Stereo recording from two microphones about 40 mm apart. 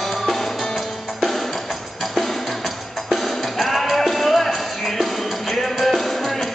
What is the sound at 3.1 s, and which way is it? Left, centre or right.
Music, centre.